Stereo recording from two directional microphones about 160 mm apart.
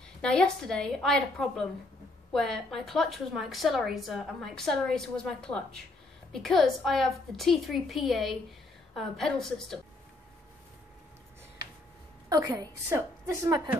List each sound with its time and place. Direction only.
0.2 s a woman's voice: 5° left (ahead or behind)
12.3 s a woman's voice: 20° right (ahead or behind)